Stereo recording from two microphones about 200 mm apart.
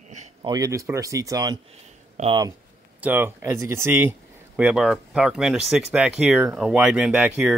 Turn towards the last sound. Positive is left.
turn(degrees=-5)  # may be behind; listen again after turning